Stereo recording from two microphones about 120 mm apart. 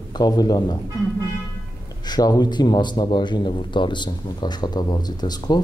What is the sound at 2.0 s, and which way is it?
A man's voice, 35° left (ahead or behind).